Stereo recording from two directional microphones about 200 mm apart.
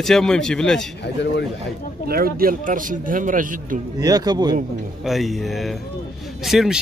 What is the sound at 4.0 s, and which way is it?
Speech, 20° right (ahead or behind).